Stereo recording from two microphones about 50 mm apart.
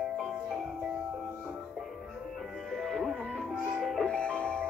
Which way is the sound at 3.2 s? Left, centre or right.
Centre.